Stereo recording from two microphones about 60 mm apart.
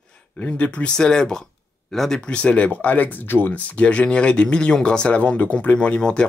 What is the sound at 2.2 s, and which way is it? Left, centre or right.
Speech, centre.